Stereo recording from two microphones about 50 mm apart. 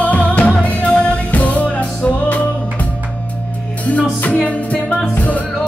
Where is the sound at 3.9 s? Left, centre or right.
Left.